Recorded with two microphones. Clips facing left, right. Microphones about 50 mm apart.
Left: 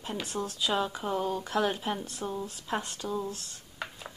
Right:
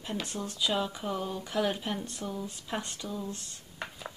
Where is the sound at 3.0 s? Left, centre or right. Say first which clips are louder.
Left 5 dB; left.